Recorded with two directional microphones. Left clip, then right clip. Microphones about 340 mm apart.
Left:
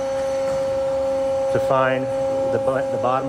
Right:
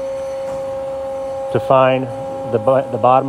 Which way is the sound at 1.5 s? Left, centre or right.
Centre.